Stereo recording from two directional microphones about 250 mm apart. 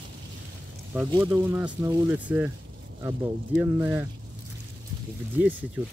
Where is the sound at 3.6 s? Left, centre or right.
Centre.